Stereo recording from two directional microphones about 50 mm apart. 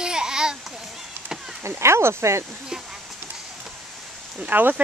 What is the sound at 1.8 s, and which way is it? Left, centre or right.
Speech, right.